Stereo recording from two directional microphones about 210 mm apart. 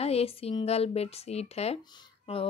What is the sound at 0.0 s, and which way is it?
Speech, 30° left (ahead or behind).